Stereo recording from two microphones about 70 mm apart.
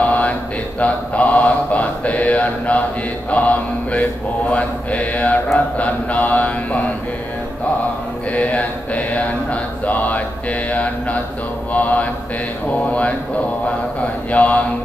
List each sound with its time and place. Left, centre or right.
0.0 s mantra: left
8.3 s mantra: left
14.3 s mantra: left